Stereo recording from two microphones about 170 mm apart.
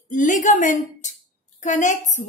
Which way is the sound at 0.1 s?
50° left (ahead or behind).